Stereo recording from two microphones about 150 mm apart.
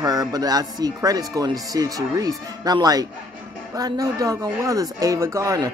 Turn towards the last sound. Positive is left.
turn(degrees=-20)  # may be behind; listen again after turning